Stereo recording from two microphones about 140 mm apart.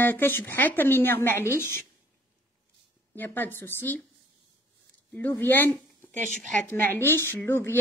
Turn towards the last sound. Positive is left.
turn(degrees=15)  # may be behind; listen again after turning